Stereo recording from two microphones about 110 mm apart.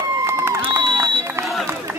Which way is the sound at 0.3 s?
25° right (ahead or behind).